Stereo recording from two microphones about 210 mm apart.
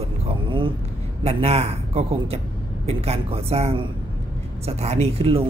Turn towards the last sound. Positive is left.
turn(degrees=-25)  # may be behind; listen again after turning